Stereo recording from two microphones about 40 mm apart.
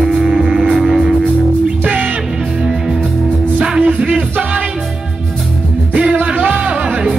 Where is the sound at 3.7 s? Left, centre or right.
Right.